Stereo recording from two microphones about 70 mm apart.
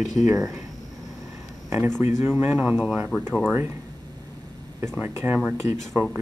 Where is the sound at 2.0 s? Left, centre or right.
Right.